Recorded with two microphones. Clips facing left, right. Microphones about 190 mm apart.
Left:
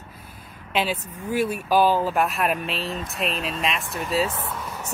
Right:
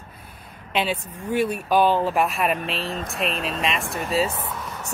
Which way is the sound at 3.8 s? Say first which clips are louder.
Right 2 dB; 60° right (ahead or behind).